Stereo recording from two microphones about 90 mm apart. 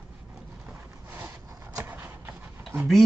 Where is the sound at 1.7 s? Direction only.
25° right (ahead or behind).